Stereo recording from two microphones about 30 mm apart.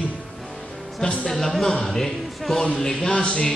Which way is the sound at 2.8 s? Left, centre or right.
Left.